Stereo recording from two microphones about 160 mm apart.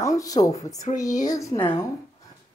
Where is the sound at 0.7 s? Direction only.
45° left (ahead or behind).